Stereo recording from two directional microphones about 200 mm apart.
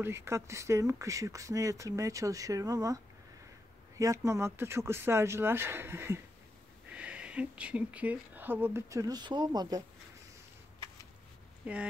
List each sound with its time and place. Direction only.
0.0 s speech: 15° right (ahead or behind)
4.0 s speech: 15° right (ahead or behind)
11.6 s speech: 5° right (ahead or behind)